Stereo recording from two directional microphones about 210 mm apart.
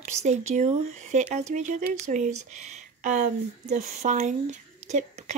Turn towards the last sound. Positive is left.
turn(degrees=-35)  # may be behind; listen again after turning